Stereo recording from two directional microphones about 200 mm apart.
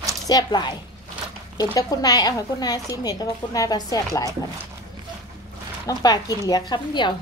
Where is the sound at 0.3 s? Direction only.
20° left (ahead or behind).